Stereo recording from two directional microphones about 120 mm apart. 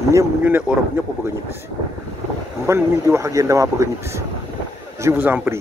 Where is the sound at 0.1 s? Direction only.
25° right (ahead or behind).